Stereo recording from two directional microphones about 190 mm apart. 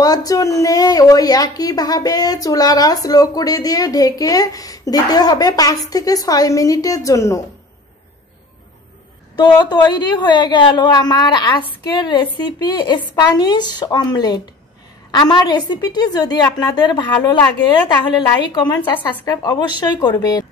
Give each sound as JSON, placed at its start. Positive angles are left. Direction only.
{"t": 0.0, "sound": "a woman's voice", "side_deg": 20}
{"t": 9.4, "sound": "a woman's voice", "side_deg": 20}